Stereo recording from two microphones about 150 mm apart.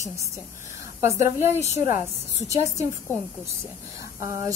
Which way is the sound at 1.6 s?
50° left (ahead or behind).